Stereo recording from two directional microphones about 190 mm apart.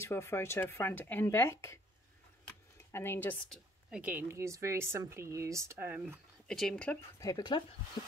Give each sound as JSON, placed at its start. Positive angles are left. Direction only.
{"t": 0.0, "sound": "speech", "side_deg": 15}
{"t": 2.4, "sound": "a sound", "side_deg": 10}
{"t": 3.9, "sound": "speech", "side_deg": -10}
{"t": 6.4, "sound": "speech", "side_deg": 0}
{"t": 7.2, "sound": "speech", "side_deg": 20}